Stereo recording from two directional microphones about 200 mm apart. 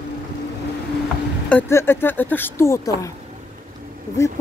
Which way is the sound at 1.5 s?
10° left (ahead or behind).